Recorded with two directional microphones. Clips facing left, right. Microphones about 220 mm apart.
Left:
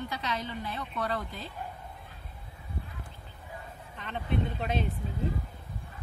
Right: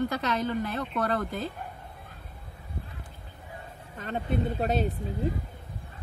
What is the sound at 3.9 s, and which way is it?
Speech, 40° right (ahead or behind).